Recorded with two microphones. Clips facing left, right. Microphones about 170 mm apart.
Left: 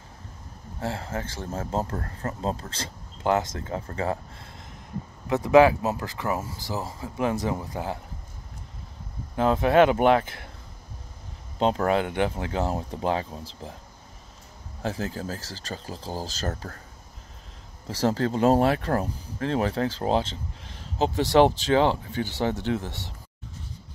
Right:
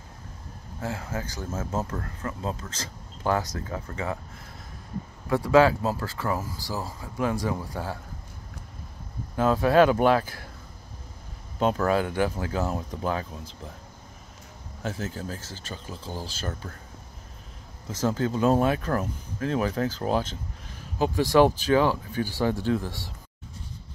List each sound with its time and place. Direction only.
0.7 s speech: 30° left (ahead or behind)
5.3 s speech: 20° left (ahead or behind)
9.4 s speech: 20° left (ahead or behind)
11.6 s speech: 25° left (ahead or behind)
14.8 s speech: 35° left (ahead or behind)
17.8 s speech: 35° left (ahead or behind)